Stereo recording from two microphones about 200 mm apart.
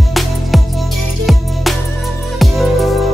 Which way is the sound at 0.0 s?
Centre (ahead or behind).